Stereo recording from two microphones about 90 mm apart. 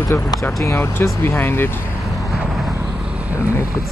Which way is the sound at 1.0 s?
25° left (ahead or behind).